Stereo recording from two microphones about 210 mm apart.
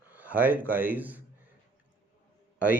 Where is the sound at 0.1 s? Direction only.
10° right (ahead or behind).